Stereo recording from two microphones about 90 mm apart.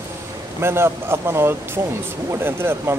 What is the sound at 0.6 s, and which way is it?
Speech, 25° right (ahead or behind).